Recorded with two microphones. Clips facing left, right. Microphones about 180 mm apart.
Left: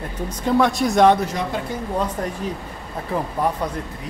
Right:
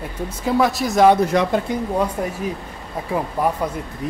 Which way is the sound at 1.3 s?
75° right (ahead or behind).